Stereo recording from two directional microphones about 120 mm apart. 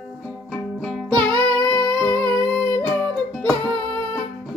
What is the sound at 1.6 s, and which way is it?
Music, 30° left (ahead or behind).